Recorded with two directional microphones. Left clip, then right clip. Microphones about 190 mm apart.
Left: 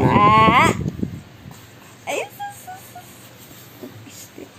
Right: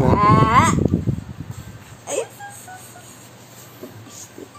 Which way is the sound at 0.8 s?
50° right (ahead or behind).